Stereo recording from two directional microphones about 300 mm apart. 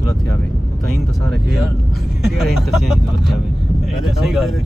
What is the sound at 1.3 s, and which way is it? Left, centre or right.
Speech, centre.